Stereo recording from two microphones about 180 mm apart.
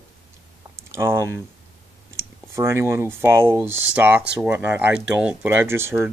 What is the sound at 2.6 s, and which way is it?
Speech, 15° right (ahead or behind).